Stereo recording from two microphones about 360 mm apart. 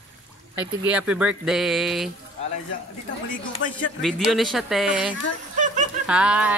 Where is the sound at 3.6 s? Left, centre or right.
Left.